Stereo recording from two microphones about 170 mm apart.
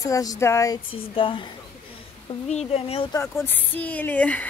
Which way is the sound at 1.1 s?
30° left (ahead or behind).